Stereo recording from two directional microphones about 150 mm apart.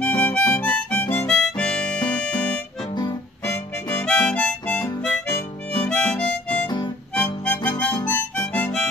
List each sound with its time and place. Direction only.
0.0 s harmonica: 10° left (ahead or behind)
2.9 s music: 30° left (ahead or behind)
3.4 s harmonica: 10° left (ahead or behind)
7.2 s music: 10° left (ahead or behind)
7.8 s harmonica: 10° left (ahead or behind)